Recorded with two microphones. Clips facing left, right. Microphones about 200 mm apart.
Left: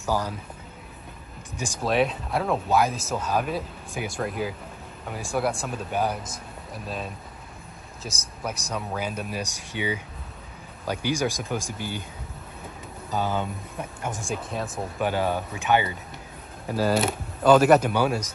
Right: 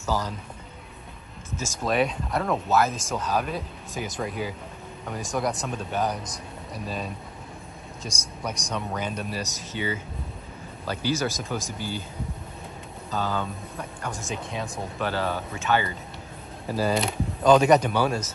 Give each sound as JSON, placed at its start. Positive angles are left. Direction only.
{"t": 0.0, "sound": "speech", "side_deg": 10}
{"t": 1.5, "sound": "speech", "side_deg": 15}
{"t": 1.9, "sound": "speech", "side_deg": 0}
{"t": 13.1, "sound": "speech", "side_deg": 20}
{"t": 14.3, "sound": "speech", "side_deg": 0}
{"t": 15.0, "sound": "speech", "side_deg": 15}
{"t": 16.8, "sound": "speech", "side_deg": 5}